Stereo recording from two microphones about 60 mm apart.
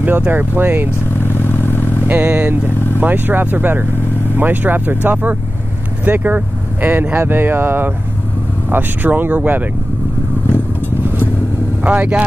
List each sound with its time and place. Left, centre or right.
0.3 s speech: right
1.2 s vehicle: left
2.0 s speech: right
11.8 s speech: right